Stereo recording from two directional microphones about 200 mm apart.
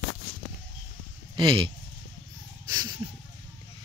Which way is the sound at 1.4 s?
25° right (ahead or behind).